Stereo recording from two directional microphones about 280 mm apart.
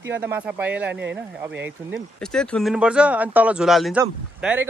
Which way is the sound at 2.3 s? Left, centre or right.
Centre.